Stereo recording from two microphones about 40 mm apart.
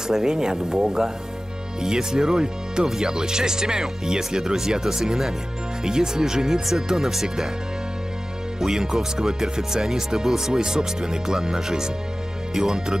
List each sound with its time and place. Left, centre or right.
0.1 s speech: centre
8.5 s speech: centre